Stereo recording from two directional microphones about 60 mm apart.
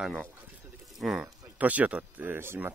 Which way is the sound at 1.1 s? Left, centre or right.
Right.